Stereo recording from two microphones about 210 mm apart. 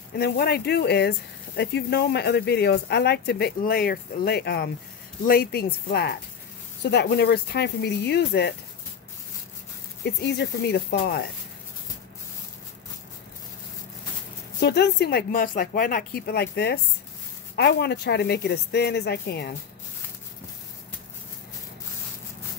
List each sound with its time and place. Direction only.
0.2 s speech: 50° left (ahead or behind)
10.2 s speech: 55° left (ahead or behind)
14.6 s speech: 55° left (ahead or behind)